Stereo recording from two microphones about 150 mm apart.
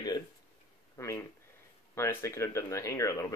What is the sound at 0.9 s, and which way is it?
Speech, 20° left (ahead or behind).